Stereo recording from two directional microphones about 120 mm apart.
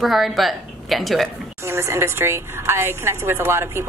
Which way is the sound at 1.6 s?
20° right (ahead or behind).